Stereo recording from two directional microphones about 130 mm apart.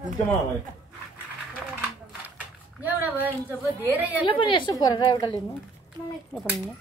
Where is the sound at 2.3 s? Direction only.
15° right (ahead or behind).